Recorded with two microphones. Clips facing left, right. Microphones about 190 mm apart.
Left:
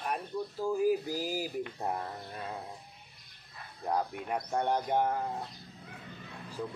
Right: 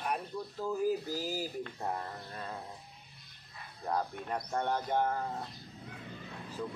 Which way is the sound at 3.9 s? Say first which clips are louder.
Left 2 dB; 10° left (ahead or behind).